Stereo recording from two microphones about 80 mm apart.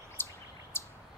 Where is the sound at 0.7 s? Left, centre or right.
Left.